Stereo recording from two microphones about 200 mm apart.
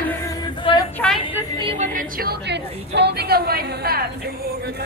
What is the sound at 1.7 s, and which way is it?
A woman's voice, 40° right (ahead or behind).